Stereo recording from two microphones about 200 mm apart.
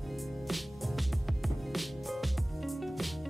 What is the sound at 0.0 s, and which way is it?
Music, centre (ahead or behind).